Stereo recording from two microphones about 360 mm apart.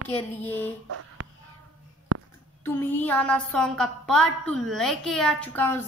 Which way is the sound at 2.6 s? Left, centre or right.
Centre.